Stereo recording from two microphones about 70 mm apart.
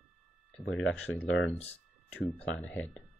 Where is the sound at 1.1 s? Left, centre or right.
Left.